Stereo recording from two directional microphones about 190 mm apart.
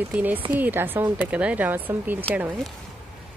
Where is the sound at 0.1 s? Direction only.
10° right (ahead or behind).